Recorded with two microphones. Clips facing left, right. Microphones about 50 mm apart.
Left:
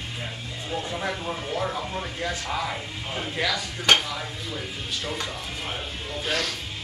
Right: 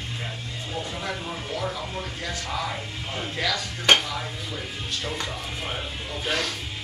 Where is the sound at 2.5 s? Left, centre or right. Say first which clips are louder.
Left 1 dB; centre.